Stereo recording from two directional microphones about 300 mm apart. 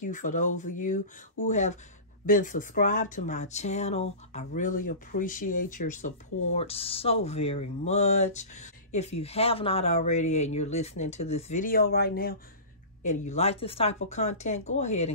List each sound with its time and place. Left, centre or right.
0.0 s speech: left